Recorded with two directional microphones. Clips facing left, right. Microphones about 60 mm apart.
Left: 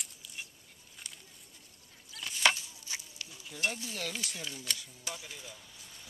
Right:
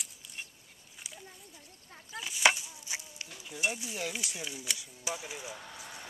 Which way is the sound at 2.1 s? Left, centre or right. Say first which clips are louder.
Right 2 dB; centre.